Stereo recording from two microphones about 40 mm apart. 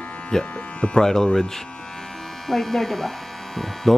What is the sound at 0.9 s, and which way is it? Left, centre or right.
Speech, centre.